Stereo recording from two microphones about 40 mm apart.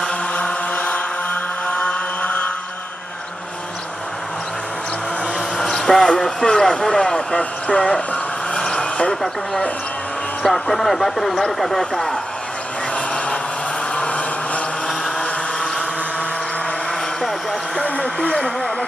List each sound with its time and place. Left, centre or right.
0.3 s chant: left
5.6 s a sound: centre
6.4 s speech: centre
7.3 s speech: left
8.5 s vehicle: left
10.4 s speech: centre
12.9 s a sound: left
13.9 s vehicle: left
15.1 s a sound: centre
17.8 s vehicle: left